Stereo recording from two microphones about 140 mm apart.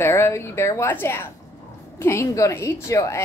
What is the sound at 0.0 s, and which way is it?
A woman's voice, 15° left (ahead or behind).